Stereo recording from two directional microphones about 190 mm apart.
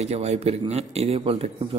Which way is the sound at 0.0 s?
35° right (ahead or behind).